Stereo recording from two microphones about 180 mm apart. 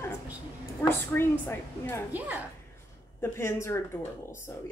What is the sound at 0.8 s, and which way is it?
A woman's voice, 10° left (ahead or behind).